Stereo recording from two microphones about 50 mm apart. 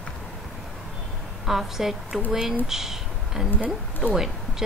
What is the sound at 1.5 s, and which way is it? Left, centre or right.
Speech, centre.